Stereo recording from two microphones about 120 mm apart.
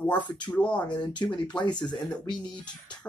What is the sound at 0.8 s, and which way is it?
Speech, 40° left (ahead or behind).